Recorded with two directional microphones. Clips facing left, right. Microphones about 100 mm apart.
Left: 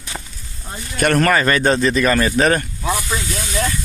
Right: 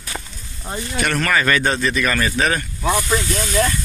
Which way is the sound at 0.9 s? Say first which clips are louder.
Left 5 dB; 45° left (ahead or behind).